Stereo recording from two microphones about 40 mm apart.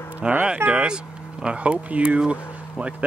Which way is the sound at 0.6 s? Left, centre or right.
Right.